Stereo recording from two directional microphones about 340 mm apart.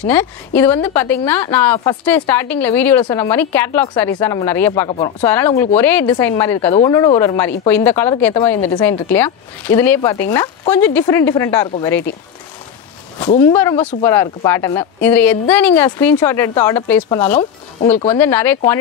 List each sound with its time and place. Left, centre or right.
0.0 s a woman's voice: centre
8.5 s a woman's voice: centre
8.8 s a woman's voice: centre
13.6 s speech: centre
17.4 s speech: centre
18.1 s speech: centre